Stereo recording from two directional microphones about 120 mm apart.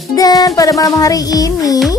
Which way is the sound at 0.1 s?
30° left (ahead or behind).